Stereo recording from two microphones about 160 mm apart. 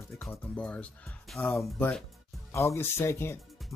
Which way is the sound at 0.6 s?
5° left (ahead or behind).